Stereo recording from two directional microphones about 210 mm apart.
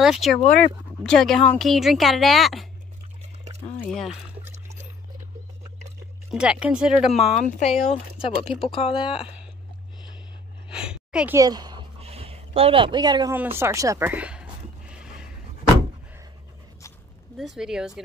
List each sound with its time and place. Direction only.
0.0 s a woman's voice: centre (ahead or behind)
3.9 s a woman's voice: centre (ahead or behind)
6.3 s a woman's voice: 5° right (ahead or behind)
7.4 s speech: 35° left (ahead or behind)
10.7 s a sound: 5° right (ahead or behind)
11.3 s a sound: 20° right (ahead or behind)
17.4 s a woman's voice: centre (ahead or behind)